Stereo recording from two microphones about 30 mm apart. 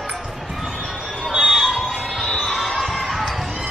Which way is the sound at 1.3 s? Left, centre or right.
Centre.